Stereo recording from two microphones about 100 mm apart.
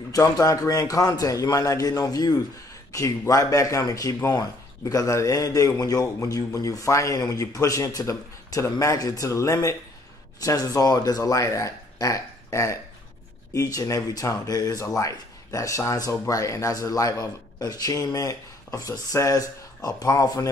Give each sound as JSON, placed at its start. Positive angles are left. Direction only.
{"t": 0.1, "sound": "a man's voice", "side_deg": 35}